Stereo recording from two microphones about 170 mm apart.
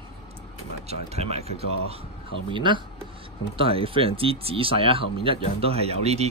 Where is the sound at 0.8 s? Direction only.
40° right (ahead or behind).